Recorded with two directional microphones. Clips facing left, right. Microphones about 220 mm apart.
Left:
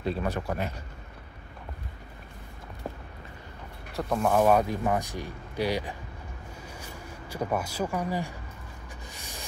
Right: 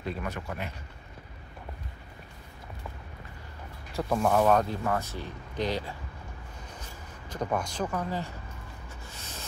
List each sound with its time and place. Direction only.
0.0 s speech: 30° left (ahead or behind)
3.9 s speech: centre (ahead or behind)
4.4 s speech: 10° left (ahead or behind)
9.1 s a sound: 15° left (ahead or behind)